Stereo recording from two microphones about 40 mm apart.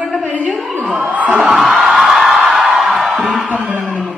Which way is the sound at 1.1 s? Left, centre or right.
Right.